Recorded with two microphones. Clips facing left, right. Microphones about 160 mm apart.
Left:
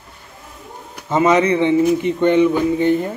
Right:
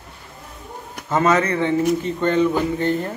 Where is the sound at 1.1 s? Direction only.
15° left (ahead or behind).